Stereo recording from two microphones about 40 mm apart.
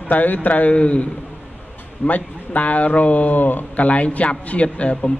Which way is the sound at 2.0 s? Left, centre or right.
Left.